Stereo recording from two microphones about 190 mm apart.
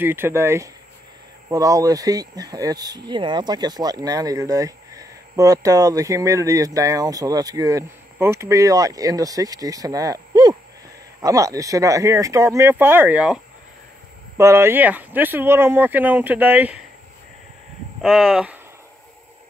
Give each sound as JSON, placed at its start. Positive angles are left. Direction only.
{"t": 0.0, "sound": "speech", "side_deg": -10}
{"t": 18.0, "sound": "speech", "side_deg": 0}